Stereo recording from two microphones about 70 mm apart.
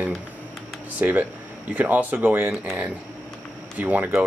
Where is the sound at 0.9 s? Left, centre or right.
Right.